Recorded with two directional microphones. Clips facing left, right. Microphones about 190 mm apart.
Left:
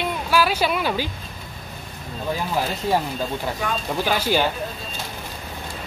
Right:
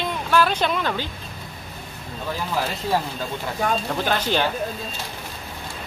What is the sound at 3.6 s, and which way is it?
Speech, 40° right (ahead or behind).